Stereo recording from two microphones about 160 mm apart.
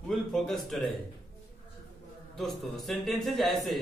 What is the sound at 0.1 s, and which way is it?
Speech, 5° left (ahead or behind).